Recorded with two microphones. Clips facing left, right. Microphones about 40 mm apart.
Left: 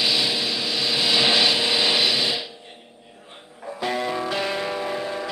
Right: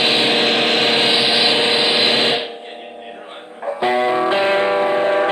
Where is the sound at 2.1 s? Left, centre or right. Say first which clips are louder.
Right 7 dB; right.